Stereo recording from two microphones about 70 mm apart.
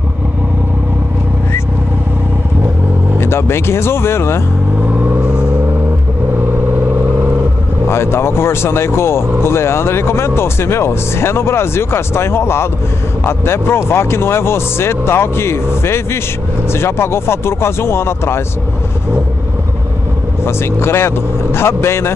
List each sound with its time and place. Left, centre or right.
3.2 s speech: left
4.9 s vehicle: right
5.2 s vehicle: centre
7.9 s speech: left
20.4 s speech: left